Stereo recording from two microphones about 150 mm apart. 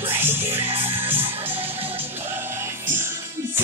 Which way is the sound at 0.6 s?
35° right (ahead or behind).